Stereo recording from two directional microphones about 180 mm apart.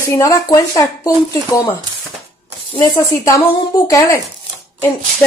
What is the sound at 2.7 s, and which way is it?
A woman's voice, 25° left (ahead or behind).